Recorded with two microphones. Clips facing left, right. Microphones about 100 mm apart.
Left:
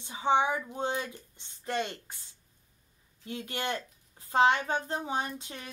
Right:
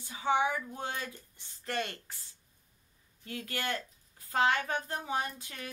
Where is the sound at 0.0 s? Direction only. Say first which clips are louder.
Left 3 dB; 25° left (ahead or behind).